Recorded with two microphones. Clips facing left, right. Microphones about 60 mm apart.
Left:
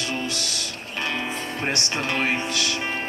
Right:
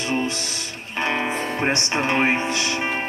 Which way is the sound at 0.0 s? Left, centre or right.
Right.